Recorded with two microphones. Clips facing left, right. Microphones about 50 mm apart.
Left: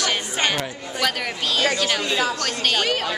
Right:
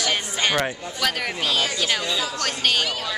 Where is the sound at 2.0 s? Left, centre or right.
Left.